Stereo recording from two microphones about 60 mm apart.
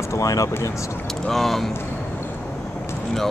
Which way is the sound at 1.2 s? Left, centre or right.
Centre.